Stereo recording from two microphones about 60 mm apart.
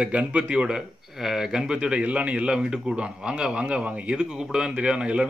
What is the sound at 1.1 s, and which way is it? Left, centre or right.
Speech, centre.